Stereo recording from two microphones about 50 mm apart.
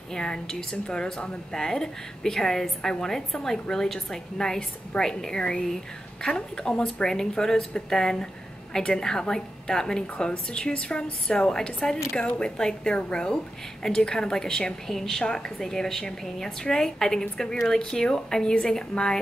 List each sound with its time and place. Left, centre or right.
0.1 s a woman's voice: centre